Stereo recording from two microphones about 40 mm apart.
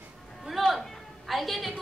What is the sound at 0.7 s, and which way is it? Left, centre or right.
A woman's voice, centre.